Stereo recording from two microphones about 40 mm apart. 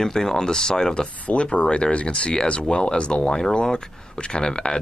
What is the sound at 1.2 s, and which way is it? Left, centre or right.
Speech, left.